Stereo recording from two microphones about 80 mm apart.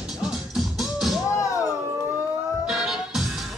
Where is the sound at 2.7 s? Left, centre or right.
Centre.